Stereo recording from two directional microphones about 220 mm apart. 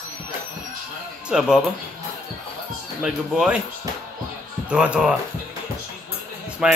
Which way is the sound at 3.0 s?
5° right (ahead or behind).